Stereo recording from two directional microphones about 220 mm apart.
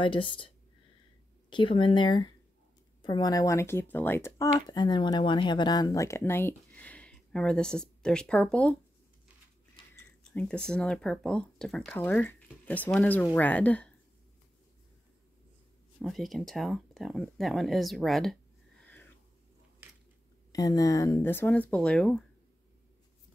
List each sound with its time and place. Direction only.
0.0 s speech: 25° left (ahead or behind)
1.5 s speech: 20° left (ahead or behind); by 8.7 s 5° left (ahead or behind)
9.9 s a sound: 5° left (ahead or behind)
10.7 s speech: 5° left (ahead or behind)
16.0 s speech: centre (ahead or behind)
20.5 s speech: 15° left (ahead or behind)